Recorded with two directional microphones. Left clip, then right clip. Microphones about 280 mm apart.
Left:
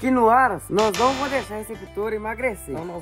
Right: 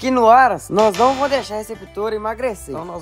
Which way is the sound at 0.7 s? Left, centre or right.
Centre.